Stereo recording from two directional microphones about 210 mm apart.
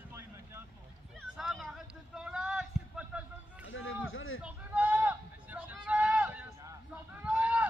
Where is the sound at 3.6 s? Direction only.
70° left (ahead or behind).